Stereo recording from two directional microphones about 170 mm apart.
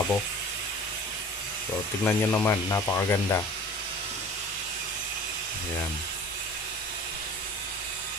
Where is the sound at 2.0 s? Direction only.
10° left (ahead or behind).